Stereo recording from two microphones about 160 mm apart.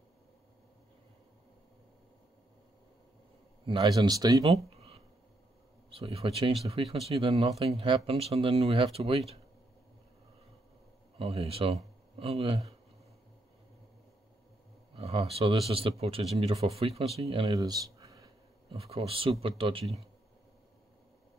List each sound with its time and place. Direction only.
3.6 s speech: 30° right (ahead or behind)
4.6 s a sound: 40° right (ahead or behind)
5.9 s speech: 35° right (ahead or behind)
11.1 s speech: 40° right (ahead or behind)
15.0 s speech: 40° right (ahead or behind)
17.6 s a sound: 25° right (ahead or behind)
18.7 s speech: 35° right (ahead or behind)